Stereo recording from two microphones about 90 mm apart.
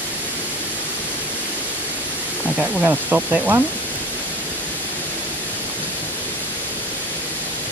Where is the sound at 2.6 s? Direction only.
20° right (ahead or behind).